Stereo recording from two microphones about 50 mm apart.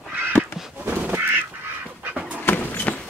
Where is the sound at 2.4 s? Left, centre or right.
Left.